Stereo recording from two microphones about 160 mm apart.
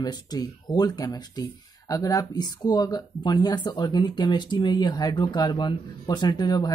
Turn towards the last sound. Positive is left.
turn(degrees=25)  # may be behind; listen again after turning